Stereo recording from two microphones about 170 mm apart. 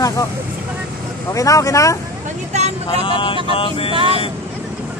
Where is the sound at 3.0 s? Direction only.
30° left (ahead or behind).